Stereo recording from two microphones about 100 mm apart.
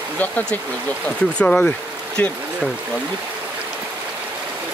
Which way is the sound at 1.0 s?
10° left (ahead or behind).